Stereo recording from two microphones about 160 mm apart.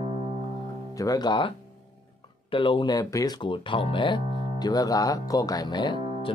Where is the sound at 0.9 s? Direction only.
25° left (ahead or behind).